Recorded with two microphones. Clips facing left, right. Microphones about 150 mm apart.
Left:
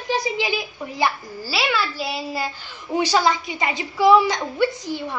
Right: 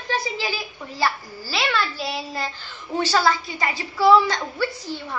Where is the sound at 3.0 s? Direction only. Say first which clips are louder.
Left 1 dB; 15° left (ahead or behind).